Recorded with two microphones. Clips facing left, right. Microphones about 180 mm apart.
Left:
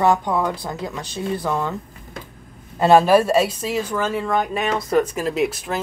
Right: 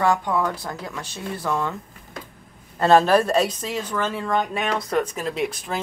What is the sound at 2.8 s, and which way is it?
Speech, 10° left (ahead or behind).